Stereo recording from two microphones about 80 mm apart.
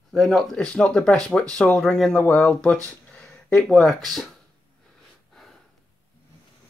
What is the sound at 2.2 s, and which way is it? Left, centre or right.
Speech, centre.